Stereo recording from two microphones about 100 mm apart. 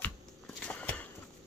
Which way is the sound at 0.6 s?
15° left (ahead or behind).